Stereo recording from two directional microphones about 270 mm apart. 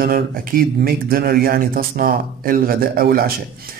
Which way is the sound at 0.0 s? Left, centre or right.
Right.